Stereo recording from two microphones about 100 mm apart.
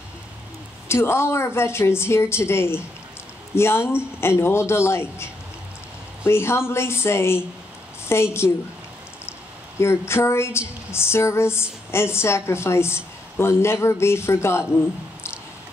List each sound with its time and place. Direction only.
0.8 s a woman's voice: 25° left (ahead or behind)
9.8 s a woman's voice: 25° left (ahead or behind)